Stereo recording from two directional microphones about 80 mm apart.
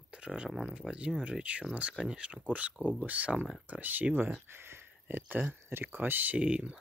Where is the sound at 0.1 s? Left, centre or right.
Centre.